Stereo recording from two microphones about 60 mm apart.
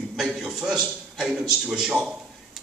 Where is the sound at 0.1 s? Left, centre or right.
Centre.